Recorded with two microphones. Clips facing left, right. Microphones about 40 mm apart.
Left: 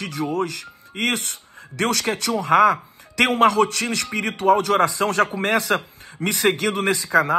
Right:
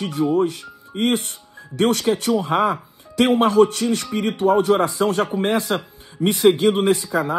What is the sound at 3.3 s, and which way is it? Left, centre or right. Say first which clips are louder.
A man's voice: right 1 dB; left.